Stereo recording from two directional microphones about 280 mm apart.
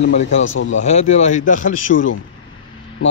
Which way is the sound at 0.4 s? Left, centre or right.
Left.